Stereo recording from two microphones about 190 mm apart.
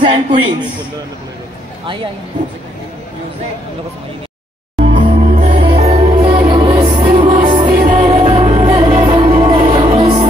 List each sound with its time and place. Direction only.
0.0 s a man's voice: 25° right (ahead or behind)
4.7 s music: 40° right (ahead or behind)
7.8 s music: 45° right (ahead or behind)
8.3 s music: 30° right (ahead or behind)